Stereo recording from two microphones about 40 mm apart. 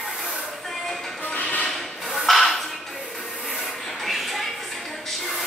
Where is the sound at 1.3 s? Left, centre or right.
Left.